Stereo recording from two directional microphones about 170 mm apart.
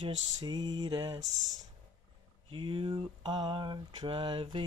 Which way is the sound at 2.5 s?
30° right (ahead or behind).